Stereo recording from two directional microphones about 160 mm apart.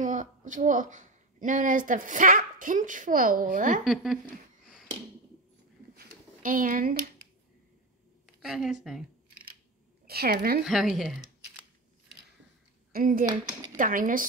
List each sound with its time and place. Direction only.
0.0 s speech: 50° right (ahead or behind)
3.8 s speech: centre (ahead or behind)
5.9 s a sound: 55° right (ahead or behind)
8.4 s speech: 5° right (ahead or behind)
10.0 s a woman's voice: 75° right (ahead or behind)
10.6 s speech: 5° right (ahead or behind)
12.9 s speech: 60° right (ahead or behind)